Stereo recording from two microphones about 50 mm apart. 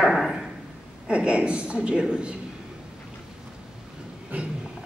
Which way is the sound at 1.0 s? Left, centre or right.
Right.